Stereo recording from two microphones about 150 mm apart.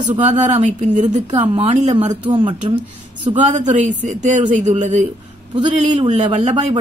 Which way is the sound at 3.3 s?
55° right (ahead or behind).